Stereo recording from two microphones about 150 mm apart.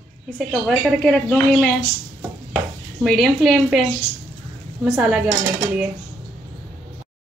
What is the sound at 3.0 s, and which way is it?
Speech, centre (ahead or behind).